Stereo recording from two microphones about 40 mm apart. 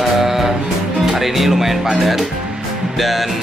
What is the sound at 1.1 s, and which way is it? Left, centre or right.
Speech, centre.